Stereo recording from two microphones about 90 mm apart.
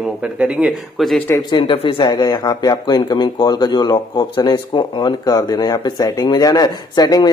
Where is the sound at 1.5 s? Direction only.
70° left (ahead or behind).